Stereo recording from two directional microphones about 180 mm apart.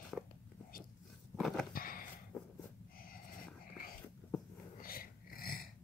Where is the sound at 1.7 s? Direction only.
50° left (ahead or behind).